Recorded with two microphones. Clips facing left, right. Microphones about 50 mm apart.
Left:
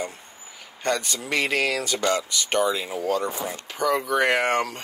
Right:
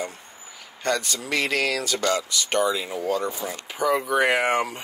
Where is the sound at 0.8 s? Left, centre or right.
Centre.